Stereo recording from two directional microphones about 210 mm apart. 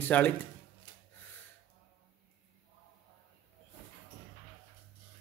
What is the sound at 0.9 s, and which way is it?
Snort, 20° left (ahead or behind).